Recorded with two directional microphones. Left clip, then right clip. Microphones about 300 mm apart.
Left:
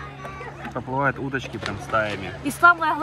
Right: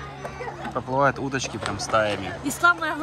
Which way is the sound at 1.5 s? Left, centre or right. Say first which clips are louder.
Right 2 dB; right.